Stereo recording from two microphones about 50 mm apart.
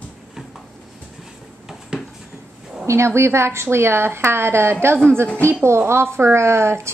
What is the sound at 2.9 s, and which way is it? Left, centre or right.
A woman's voice, right.